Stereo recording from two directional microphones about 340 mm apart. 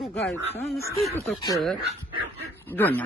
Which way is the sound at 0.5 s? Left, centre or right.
Centre.